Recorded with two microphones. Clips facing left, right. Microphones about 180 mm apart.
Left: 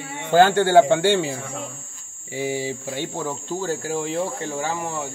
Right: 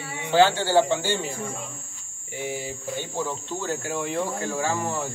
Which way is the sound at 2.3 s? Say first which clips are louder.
Left 6 dB; 90° left.